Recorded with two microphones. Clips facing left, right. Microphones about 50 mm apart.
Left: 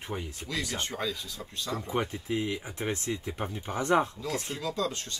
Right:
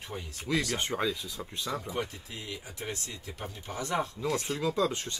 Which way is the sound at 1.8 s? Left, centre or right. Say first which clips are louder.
Left 4 dB; left.